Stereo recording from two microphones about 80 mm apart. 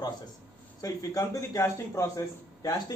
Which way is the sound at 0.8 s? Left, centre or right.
Left.